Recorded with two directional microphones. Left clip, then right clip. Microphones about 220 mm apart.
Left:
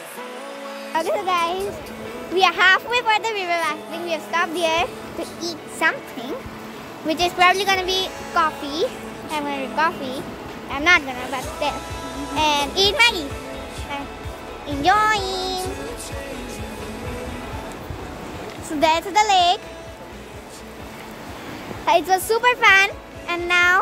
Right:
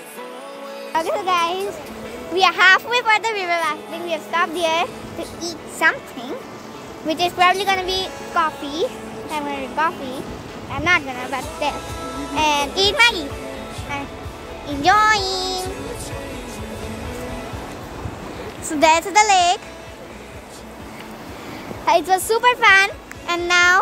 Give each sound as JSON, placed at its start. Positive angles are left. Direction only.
{"t": 0.9, "sound": "music", "side_deg": -5}
{"t": 2.3, "sound": "a child's voice", "side_deg": 0}
{"t": 11.1, "sound": "music", "side_deg": -10}
{"t": 12.4, "sound": "a child's voice", "side_deg": -10}
{"t": 14.8, "sound": "music", "side_deg": -10}
{"t": 18.8, "sound": "music", "side_deg": -20}
{"t": 21.8, "sound": "a child's voice", "side_deg": -10}
{"t": 23.2, "sound": "a child's voice", "side_deg": -20}